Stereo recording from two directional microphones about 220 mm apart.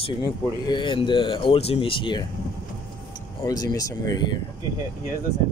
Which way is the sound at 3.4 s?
15° left (ahead or behind).